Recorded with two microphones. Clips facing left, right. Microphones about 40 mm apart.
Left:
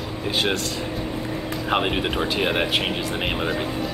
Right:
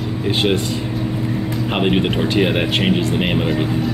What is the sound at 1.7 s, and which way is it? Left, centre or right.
Speech, centre.